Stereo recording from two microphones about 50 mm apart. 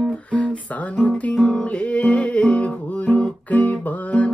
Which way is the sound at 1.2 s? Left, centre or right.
Left.